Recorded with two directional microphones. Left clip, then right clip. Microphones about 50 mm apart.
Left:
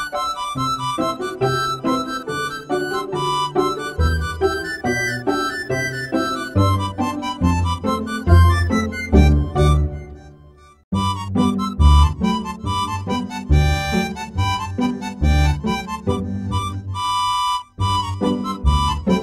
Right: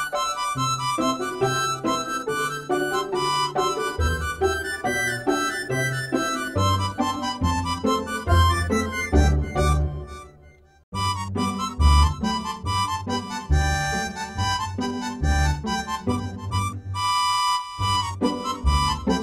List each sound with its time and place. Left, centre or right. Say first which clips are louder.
0.0 s music: left 2 dB; left
1.4 s harmonica: left 4 dB; left
3.7 s music: left 1 dB; left
10.9 s music: left 3 dB; left